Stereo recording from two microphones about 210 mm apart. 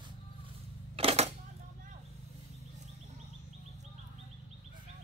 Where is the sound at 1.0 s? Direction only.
30° right (ahead or behind).